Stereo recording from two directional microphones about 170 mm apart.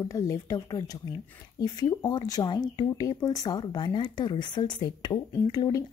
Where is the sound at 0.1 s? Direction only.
20° left (ahead or behind).